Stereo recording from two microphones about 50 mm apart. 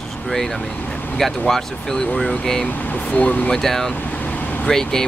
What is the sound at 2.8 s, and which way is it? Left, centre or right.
Speech, left.